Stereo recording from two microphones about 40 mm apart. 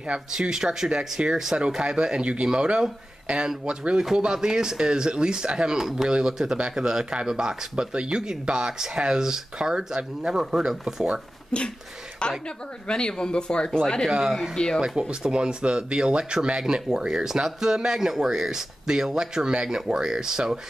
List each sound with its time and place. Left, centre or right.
0.3 s speech: centre
11.5 s speech: left
14.1 s speech: centre